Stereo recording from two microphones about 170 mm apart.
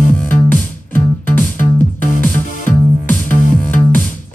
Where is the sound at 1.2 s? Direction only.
50° left (ahead or behind).